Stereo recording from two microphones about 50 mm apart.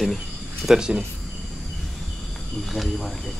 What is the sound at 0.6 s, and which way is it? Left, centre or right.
Speech, centre.